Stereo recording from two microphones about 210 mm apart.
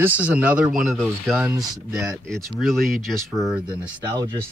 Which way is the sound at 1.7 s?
15° right (ahead or behind).